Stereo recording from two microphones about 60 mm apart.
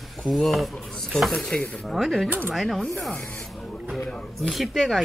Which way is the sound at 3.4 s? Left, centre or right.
Centre.